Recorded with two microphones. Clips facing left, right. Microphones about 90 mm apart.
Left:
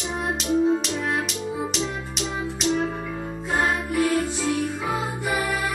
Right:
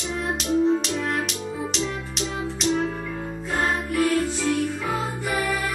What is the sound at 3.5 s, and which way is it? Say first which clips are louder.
Music: left 1 dB; 20° left (ahead or behind).